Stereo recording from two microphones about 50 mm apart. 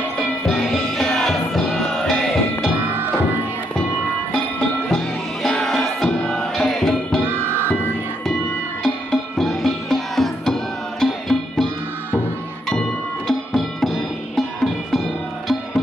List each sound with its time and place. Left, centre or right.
0.5 s music: centre
4.8 s music: centre
8.8 s music: centre
13.3 s music: centre